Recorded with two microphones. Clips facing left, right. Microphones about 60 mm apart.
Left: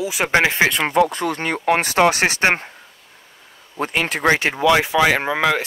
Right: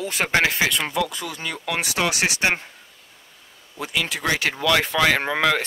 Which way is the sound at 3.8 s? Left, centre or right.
Left.